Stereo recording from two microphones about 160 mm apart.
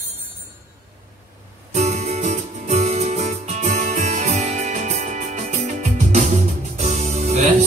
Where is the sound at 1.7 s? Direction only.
45° right (ahead or behind).